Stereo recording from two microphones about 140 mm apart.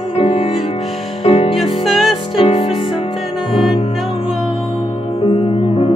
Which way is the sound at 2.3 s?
45° left (ahead or behind).